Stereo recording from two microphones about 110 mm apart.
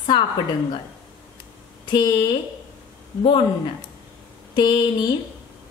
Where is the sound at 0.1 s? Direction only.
45° left (ahead or behind).